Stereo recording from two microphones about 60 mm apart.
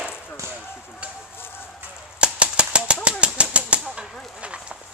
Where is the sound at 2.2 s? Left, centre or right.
Centre.